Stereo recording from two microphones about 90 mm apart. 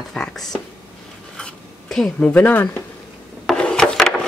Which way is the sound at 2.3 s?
20° left (ahead or behind).